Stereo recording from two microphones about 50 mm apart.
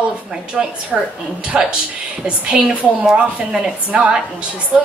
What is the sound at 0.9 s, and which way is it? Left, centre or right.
Speech, centre.